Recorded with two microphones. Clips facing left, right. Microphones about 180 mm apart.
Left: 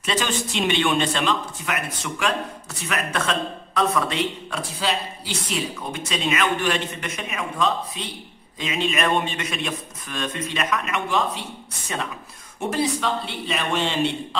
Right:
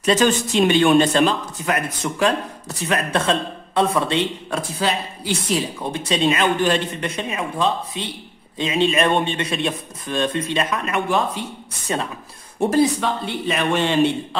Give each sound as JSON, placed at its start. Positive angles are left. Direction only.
{"t": 0.0, "sound": "a man's voice", "side_deg": -40}
{"t": 4.5, "sound": "speech", "side_deg": -50}
{"t": 5.8, "sound": "a man's voice", "side_deg": -30}
{"t": 12.5, "sound": "speech", "side_deg": -45}